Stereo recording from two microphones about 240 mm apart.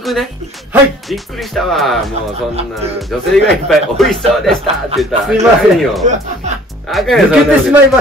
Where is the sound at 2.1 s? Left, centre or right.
Right.